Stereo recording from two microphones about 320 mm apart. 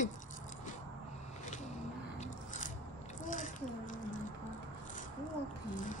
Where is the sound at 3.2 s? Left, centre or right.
Left.